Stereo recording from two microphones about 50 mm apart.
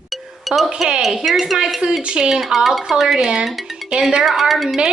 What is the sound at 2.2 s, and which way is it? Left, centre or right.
A woman's voice, centre.